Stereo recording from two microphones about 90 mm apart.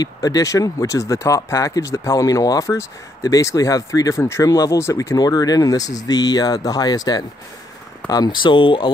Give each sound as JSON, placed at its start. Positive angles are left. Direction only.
{"t": 0.0, "sound": "speech", "side_deg": 45}